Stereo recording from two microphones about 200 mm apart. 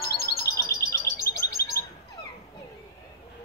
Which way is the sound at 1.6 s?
50° left (ahead or behind).